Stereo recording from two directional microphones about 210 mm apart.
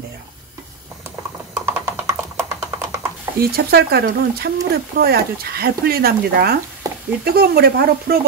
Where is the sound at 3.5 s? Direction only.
50° right (ahead or behind).